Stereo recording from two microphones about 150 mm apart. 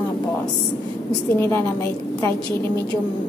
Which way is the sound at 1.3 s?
15° left (ahead or behind).